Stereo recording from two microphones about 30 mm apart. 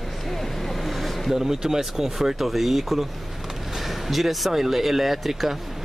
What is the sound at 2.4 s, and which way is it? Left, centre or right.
Speech, centre.